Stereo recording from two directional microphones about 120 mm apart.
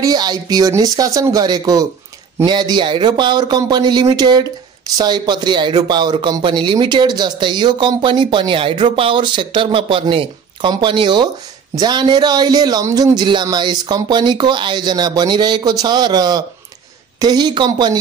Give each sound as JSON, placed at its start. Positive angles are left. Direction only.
{"t": 0.0, "sound": "speech", "side_deg": -35}